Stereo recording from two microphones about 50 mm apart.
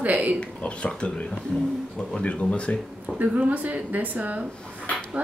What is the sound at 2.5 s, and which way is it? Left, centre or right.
Speech, left.